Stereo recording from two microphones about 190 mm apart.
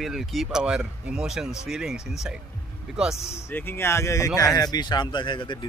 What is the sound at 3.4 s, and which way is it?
Speech, 10° left (ahead or behind).